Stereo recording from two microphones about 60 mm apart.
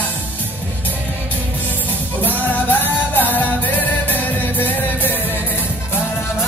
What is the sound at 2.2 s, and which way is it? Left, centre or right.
Music, left.